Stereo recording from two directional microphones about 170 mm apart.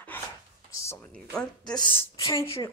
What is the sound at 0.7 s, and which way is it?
Speech, 15° left (ahead or behind).